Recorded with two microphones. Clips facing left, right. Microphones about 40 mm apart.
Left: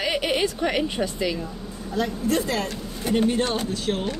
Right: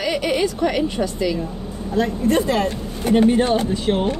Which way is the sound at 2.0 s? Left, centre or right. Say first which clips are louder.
Right 5 dB; right.